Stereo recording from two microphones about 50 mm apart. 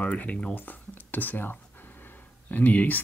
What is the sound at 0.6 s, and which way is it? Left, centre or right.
Speech, left.